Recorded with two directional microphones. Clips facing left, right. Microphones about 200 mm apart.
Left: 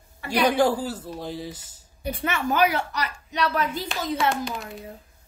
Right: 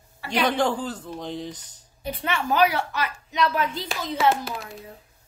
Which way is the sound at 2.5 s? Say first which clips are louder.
Right 2 dB; 45° left (ahead or behind).